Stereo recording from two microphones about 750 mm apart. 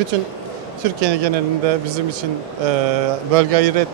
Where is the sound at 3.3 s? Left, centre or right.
Right.